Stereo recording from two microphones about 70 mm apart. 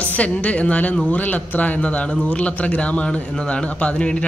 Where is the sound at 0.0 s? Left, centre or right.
Left.